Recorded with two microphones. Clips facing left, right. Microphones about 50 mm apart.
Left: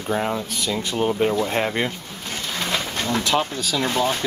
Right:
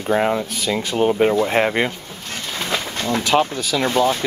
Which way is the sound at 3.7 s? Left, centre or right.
Right.